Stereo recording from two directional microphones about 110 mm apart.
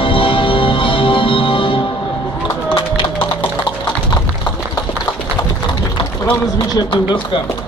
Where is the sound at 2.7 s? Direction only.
50° left (ahead or behind).